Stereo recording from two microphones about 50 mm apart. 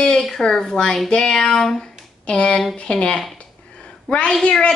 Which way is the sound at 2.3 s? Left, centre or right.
Left.